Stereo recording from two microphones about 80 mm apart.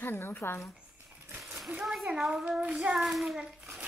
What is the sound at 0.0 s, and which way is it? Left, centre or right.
Speech, left.